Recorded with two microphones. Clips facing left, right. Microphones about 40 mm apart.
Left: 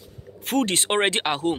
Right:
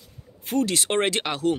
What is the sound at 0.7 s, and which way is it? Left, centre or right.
Speech, left.